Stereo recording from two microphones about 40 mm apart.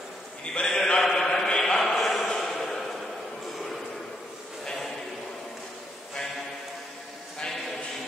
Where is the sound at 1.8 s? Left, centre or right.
Centre.